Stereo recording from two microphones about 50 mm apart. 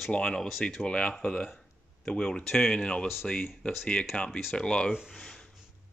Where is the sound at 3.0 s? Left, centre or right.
Centre.